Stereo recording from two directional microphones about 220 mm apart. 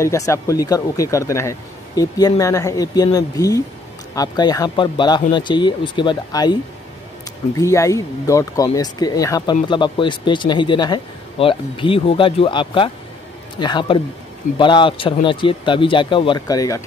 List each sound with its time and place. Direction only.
0.0 s speech: 15° left (ahead or behind)